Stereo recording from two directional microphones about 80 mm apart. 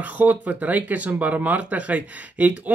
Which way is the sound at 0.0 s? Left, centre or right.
Right.